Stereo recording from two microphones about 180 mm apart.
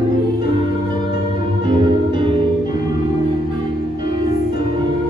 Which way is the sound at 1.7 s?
25° right (ahead or behind).